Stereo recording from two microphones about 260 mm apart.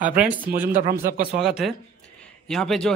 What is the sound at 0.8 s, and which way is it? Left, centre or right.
Speech, right.